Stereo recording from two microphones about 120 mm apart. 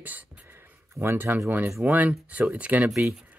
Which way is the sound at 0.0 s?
15° right (ahead or behind).